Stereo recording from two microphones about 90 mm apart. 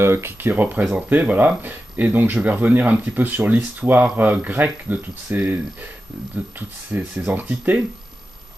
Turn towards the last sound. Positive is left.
turn(degrees=-20)  # may be behind; listen again after turning